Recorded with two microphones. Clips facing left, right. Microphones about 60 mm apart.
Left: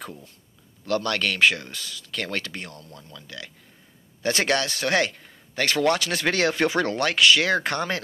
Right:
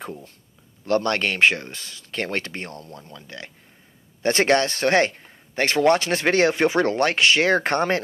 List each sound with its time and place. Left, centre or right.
0.8 s speech: right